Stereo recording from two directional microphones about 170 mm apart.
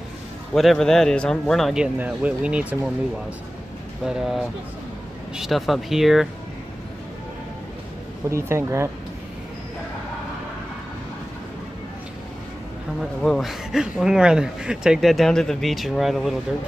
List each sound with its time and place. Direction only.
0.6 s speech: centre (ahead or behind)
4.0 s speech: 5° right (ahead or behind)
8.3 s speech: 15° right (ahead or behind)
13.2 s speech: centre (ahead or behind)